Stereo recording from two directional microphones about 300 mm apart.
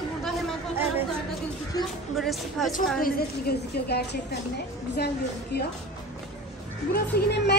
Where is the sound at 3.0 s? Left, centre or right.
Left.